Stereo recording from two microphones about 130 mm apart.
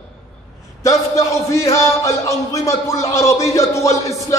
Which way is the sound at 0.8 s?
25° left (ahead or behind).